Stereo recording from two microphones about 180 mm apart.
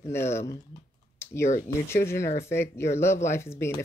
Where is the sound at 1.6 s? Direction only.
15° left (ahead or behind).